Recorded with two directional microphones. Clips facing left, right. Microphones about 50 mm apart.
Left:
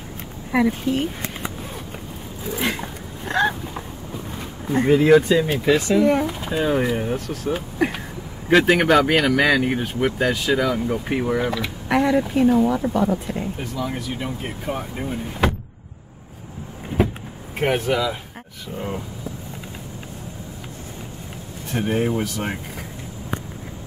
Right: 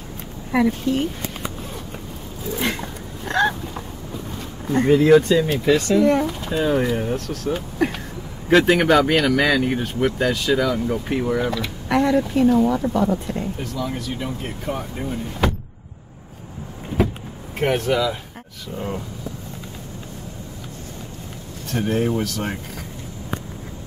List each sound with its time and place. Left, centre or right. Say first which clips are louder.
0.5 s speech: right 1 dB; centre
2.6 s dog: left 1 dB; centre
4.6 s speech: right 1 dB; centre
17.6 s speech: right 1 dB; centre
21.6 s speech: even; centre